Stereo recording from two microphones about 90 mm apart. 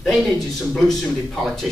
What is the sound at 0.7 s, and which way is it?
Speech, 5° left (ahead or behind).